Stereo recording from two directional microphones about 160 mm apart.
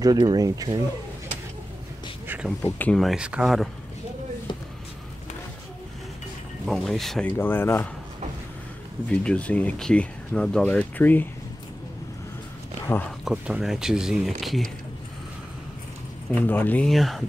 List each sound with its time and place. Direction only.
0.0 s speech: 25° right (ahead or behind)
2.2 s a sound: 10° right (ahead or behind)
2.6 s speech: 10° left (ahead or behind)
3.0 s speech: 5° right (ahead or behind)
6.6 s speech: centre (ahead or behind)
9.1 s speech: 5° left (ahead or behind)
12.8 s speech: 15° left (ahead or behind)
13.2 s speech: 5° right (ahead or behind)
16.3 s speech: 10° left (ahead or behind)